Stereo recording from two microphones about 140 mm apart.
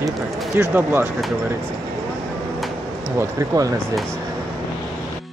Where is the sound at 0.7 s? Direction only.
15° right (ahead or behind).